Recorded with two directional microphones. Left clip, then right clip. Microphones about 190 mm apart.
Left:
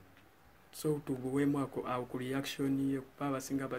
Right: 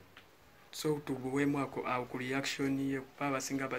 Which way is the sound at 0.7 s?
25° left (ahead or behind).